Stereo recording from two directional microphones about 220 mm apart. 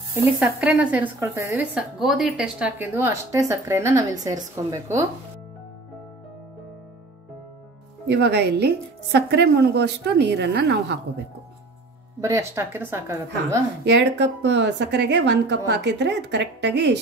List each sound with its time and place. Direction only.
0.4 s a woman's voice: 5° right (ahead or behind)
8.1 s speech: 50° right (ahead or behind)
12.2 s a woman's voice: 15° right (ahead or behind)
13.8 s speech: 50° right (ahead or behind)